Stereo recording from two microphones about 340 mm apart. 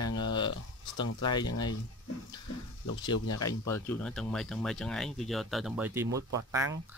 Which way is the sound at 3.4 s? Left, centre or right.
Centre.